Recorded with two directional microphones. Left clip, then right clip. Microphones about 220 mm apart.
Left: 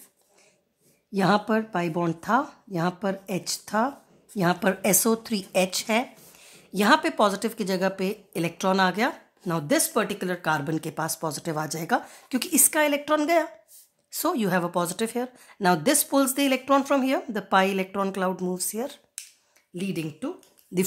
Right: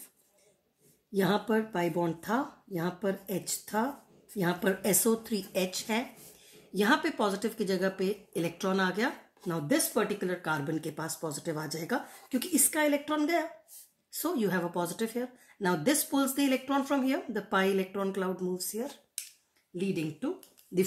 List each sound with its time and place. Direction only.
1.1 s a woman's voice: 40° left (ahead or behind)